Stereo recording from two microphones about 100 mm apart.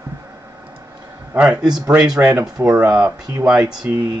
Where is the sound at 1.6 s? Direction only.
45° right (ahead or behind).